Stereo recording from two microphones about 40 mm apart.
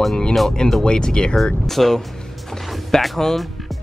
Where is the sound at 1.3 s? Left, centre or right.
Centre.